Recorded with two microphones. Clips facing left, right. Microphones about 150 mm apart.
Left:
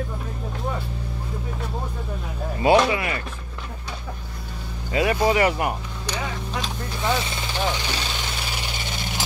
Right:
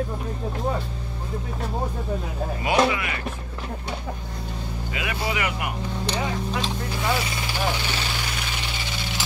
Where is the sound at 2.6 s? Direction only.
30° left (ahead or behind).